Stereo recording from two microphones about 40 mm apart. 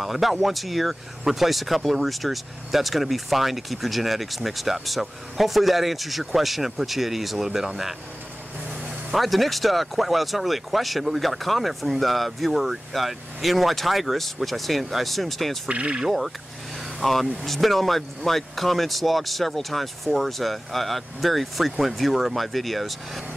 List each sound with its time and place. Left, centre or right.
0.0 s speech: centre
9.1 s speech: centre
15.7 s speech: right
17.0 s speech: centre